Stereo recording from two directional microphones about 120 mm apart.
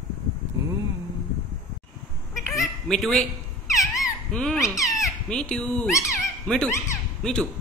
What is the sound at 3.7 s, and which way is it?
Crow, 25° left (ahead or behind).